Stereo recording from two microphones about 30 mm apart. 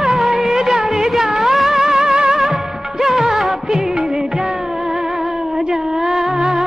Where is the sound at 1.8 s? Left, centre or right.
Right.